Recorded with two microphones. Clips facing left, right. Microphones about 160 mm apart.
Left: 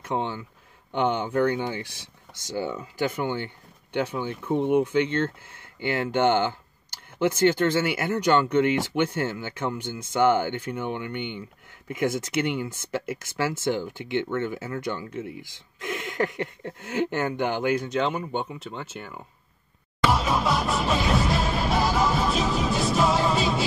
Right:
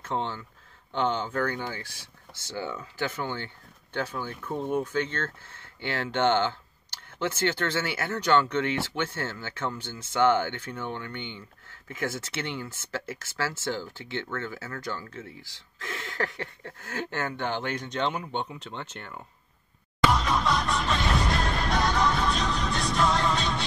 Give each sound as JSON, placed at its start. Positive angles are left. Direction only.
{"t": 0.0, "sound": "speech", "side_deg": 15}
{"t": 20.1, "sound": "music", "side_deg": 5}